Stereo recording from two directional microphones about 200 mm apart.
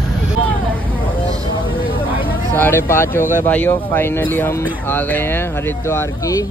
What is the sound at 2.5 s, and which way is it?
Speech, 10° left (ahead or behind).